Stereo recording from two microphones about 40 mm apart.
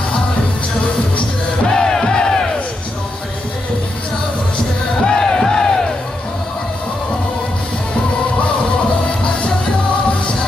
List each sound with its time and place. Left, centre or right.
1.7 s music: centre
5.0 s music: centre